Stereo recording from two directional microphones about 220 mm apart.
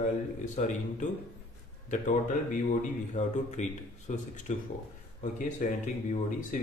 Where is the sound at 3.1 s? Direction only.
35° left (ahead or behind).